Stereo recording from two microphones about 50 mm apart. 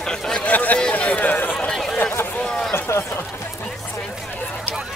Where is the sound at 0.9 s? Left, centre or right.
Left.